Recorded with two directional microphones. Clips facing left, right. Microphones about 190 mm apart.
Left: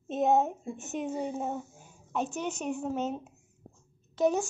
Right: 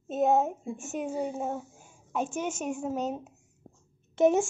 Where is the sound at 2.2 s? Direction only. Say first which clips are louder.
Right 2 dB; 50° right (ahead or behind).